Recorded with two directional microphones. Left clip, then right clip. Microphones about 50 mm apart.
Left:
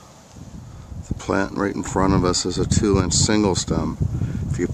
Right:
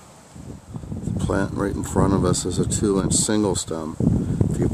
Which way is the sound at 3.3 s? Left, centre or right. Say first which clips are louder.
Left 2 dB; left.